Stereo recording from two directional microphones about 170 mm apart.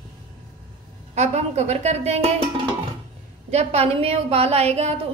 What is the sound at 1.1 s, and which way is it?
A woman's voice, 40° right (ahead or behind).